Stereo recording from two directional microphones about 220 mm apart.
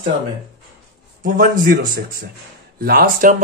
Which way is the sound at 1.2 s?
40° right (ahead or behind).